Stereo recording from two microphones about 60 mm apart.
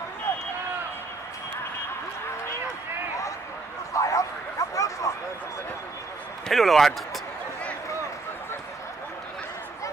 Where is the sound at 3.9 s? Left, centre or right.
Left.